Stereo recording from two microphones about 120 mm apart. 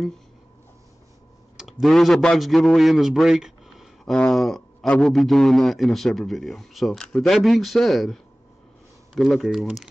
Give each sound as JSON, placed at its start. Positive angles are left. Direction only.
{"t": 1.6, "sound": "a man's voice", "side_deg": 0}